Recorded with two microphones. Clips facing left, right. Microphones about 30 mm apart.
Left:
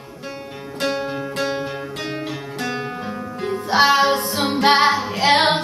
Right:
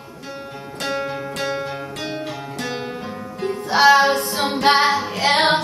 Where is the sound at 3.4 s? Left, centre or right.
Centre.